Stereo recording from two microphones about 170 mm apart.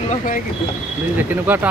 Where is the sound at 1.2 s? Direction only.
10° right (ahead or behind).